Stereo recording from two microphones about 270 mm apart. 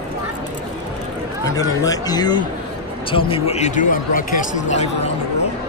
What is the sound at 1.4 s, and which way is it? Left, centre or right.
Speech, centre.